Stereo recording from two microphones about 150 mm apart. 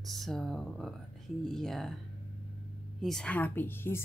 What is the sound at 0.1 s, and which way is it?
Speech, centre (ahead or behind).